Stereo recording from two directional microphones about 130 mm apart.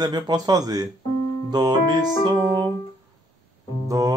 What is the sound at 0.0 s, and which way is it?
A man's voice, 30° right (ahead or behind).